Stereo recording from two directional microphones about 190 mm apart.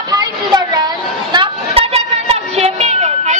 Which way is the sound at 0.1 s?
20° right (ahead or behind).